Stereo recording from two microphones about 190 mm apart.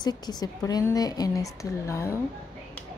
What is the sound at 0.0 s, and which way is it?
A woman's voice, 20° left (ahead or behind).